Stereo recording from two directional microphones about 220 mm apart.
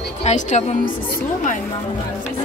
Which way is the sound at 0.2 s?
30° left (ahead or behind).